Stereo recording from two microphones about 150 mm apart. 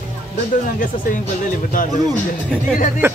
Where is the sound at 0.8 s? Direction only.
65° left (ahead or behind).